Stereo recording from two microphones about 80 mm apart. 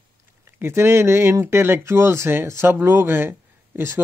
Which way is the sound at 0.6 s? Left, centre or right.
Right.